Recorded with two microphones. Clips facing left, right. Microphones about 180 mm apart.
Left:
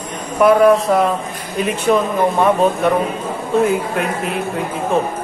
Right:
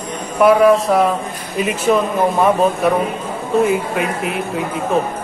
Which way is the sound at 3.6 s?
Centre (ahead or behind).